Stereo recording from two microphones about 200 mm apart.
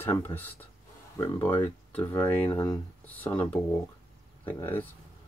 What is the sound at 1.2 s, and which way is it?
Speech, 20° left (ahead or behind).